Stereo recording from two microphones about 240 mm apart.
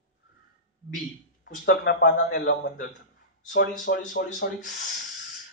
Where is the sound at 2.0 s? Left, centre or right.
Left.